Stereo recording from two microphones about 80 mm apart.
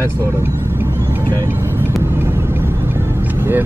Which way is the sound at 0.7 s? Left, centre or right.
Right.